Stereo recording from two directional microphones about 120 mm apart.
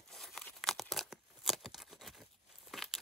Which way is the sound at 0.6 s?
Centre (ahead or behind).